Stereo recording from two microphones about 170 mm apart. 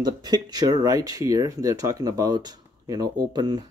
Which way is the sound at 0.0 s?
25° right (ahead or behind).